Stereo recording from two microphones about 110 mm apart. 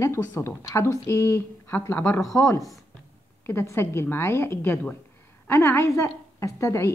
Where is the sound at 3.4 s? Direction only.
25° left (ahead or behind).